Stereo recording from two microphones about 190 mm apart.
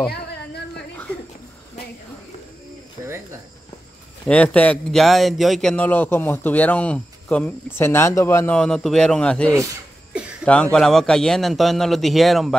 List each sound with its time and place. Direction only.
4.3 s a man's voice: 5° left (ahead or behind)